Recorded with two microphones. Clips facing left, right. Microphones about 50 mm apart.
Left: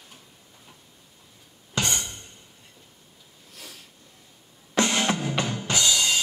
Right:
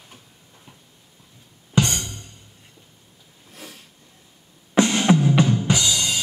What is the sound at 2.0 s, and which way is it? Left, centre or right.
Music, left.